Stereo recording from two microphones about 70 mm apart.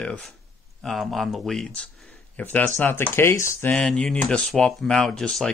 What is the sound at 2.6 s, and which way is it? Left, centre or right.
Speech, left.